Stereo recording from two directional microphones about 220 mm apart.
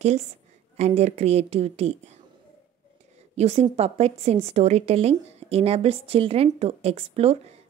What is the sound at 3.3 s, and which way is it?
A woman's voice, 30° right (ahead or behind).